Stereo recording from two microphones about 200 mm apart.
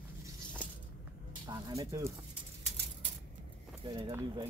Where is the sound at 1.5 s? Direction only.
15° right (ahead or behind).